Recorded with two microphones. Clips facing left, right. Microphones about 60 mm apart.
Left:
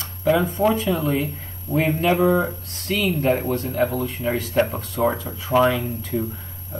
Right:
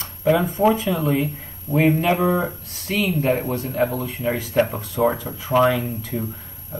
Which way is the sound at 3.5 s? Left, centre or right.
Centre.